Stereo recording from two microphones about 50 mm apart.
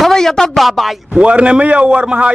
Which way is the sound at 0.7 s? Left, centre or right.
Centre.